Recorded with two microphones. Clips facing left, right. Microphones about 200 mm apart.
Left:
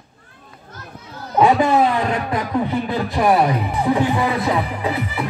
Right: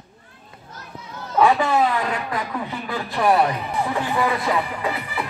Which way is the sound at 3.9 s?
15° left (ahead or behind).